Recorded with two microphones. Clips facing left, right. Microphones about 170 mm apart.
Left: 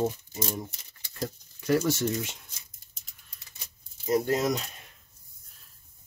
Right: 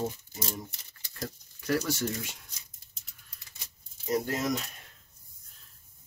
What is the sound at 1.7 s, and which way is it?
Speech, 25° left (ahead or behind).